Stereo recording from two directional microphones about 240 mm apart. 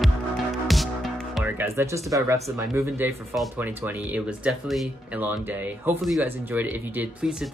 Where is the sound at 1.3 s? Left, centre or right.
Centre.